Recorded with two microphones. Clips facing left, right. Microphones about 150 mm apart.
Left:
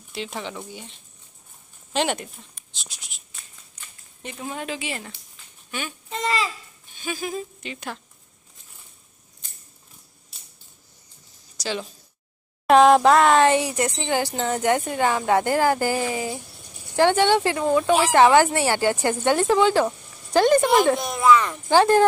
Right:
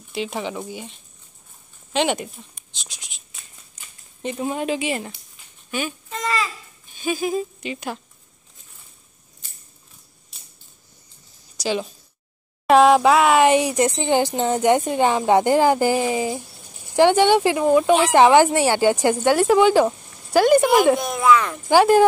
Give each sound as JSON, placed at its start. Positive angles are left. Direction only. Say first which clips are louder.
{"t": 0.1, "sound": "speech", "louder": "right 5 dB", "side_deg": -10}
{"t": 1.9, "sound": "speech", "louder": "right 3 dB", "side_deg": 0}
{"t": 2.8, "sound": "a sound", "louder": "right 1 dB", "side_deg": 5}
{"t": 4.2, "sound": "speech", "louder": "right 8 dB", "side_deg": -20}
{"t": 6.0, "sound": "babbling", "louder": "left 4 dB", "side_deg": 25}
{"t": 7.0, "sound": "speech", "louder": "right 6 dB", "side_deg": -10}
{"t": 11.5, "sound": "a woman's voice", "louder": "right 5 dB", "side_deg": -10}
{"t": 12.6, "sound": "speech", "louder": "right 1 dB", "side_deg": 0}
{"t": 21.6, "sound": "speech", "louder": "right 3 dB", "side_deg": -10}